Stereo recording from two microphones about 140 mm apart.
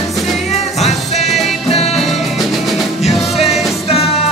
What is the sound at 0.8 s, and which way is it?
Music, 50° left (ahead or behind).